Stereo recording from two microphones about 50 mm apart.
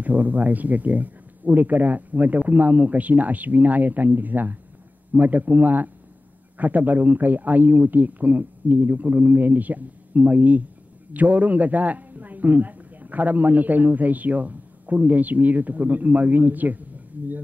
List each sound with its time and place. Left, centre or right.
0.0 s speech: right